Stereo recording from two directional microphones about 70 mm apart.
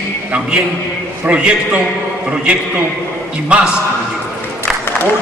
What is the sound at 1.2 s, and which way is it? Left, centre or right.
Speech, centre.